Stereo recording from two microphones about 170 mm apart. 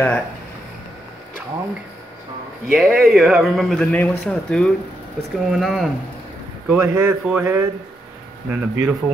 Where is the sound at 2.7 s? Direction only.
Centre (ahead or behind).